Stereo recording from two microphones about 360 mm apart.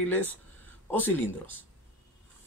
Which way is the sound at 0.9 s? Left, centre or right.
Centre.